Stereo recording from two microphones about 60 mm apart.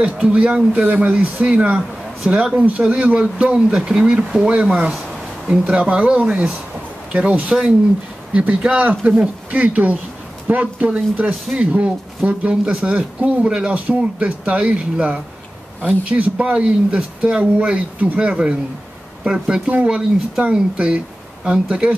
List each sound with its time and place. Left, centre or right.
0.0 s speech: centre
18.2 s speech: centre
19.7 s speech: right